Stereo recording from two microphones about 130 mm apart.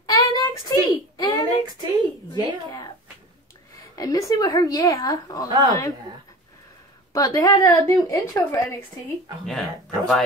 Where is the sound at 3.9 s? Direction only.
25° left (ahead or behind).